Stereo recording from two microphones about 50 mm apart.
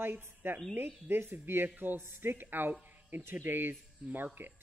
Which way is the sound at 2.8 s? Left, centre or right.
Right.